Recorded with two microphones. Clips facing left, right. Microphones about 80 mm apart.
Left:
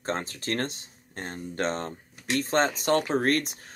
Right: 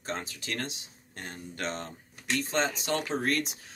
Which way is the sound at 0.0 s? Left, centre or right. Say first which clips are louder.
Left 5 dB; left.